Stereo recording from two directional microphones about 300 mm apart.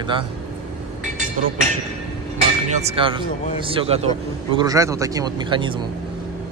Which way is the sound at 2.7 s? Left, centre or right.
Right.